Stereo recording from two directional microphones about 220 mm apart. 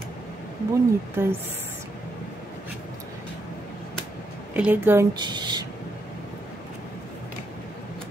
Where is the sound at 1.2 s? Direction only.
10° right (ahead or behind).